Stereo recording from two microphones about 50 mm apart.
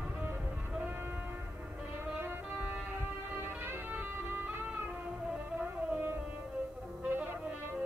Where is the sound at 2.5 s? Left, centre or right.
Right.